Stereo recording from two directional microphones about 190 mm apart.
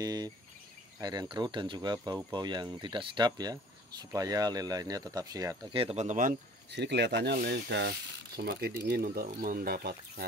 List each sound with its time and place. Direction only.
0.0 s speech: 20° right (ahead or behind)
5.8 s speech: 35° right (ahead or behind)
6.7 s speech: 65° right (ahead or behind)